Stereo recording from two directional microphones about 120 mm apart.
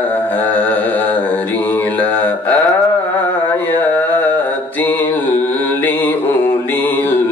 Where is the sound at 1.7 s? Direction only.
15° left (ahead or behind).